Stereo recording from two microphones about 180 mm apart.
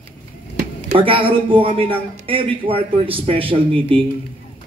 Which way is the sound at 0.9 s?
30° right (ahead or behind).